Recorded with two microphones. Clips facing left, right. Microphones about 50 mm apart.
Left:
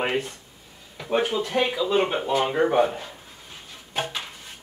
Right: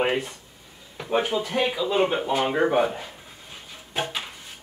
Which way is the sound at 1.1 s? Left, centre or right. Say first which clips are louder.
Left 1 dB; centre.